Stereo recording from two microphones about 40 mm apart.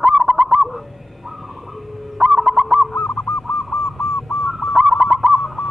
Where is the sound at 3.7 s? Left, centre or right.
Left.